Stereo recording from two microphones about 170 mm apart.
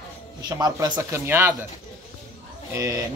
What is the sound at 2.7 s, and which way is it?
Speech, 20° right (ahead or behind).